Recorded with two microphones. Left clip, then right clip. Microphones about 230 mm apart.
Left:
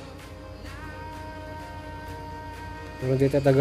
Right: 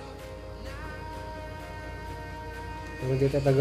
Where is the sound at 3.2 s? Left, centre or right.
Left.